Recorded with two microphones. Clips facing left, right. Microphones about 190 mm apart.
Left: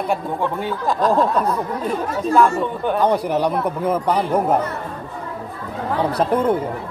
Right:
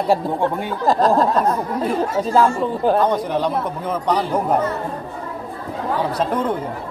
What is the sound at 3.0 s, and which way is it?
A man's voice, 10° left (ahead or behind).